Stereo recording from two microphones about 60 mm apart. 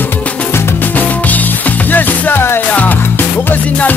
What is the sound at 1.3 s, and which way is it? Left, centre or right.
Music, left.